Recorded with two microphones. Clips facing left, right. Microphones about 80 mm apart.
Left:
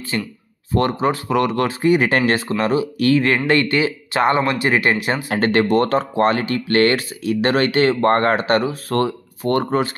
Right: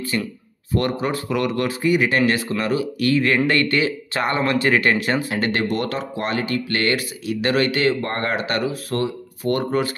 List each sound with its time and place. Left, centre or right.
0.7 s speech: left
5.3 s speech: left
8.0 s speech: left